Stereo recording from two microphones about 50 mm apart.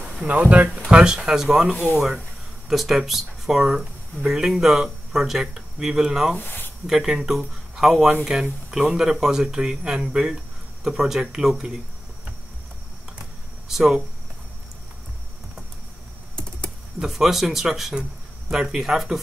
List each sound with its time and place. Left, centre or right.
0.3 s speech: right
0.8 s speech: centre
6.3 s speech: left
6.9 s speech: centre
13.7 s speech: centre
17.0 s speech: centre